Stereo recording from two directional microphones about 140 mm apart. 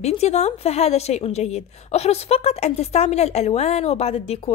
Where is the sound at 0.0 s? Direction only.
50° left (ahead or behind).